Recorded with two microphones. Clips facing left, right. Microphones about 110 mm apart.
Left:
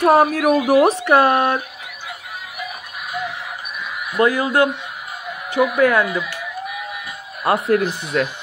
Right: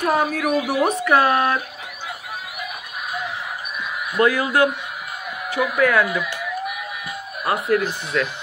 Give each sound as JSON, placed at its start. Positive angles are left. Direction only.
{"t": 0.2, "sound": "speech", "side_deg": 50}
{"t": 1.0, "sound": "speech", "side_deg": 25}
{"t": 4.2, "sound": "speech", "side_deg": 15}
{"t": 7.4, "sound": "speech", "side_deg": 30}